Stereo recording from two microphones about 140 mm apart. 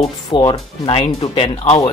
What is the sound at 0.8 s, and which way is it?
Speech, 40° left (ahead or behind).